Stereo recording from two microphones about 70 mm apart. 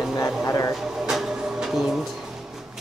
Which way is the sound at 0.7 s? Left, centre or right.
Centre.